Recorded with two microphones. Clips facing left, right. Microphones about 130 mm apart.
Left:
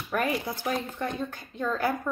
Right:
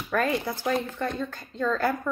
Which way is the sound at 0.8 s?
15° left (ahead or behind).